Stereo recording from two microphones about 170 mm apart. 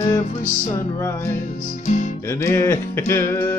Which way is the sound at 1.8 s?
45° left (ahead or behind).